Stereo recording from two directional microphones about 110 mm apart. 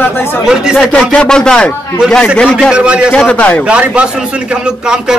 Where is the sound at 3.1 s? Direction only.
10° left (ahead or behind).